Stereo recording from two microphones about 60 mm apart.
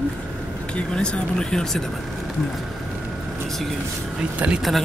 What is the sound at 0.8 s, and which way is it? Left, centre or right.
Speech, centre.